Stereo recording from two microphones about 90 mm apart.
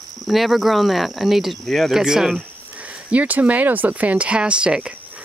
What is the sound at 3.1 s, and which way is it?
Speech, 15° right (ahead or behind).